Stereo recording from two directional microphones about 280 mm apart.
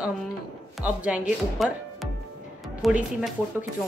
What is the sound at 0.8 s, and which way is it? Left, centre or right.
Speech, centre.